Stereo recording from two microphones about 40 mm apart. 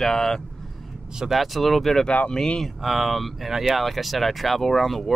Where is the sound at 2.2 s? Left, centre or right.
Left.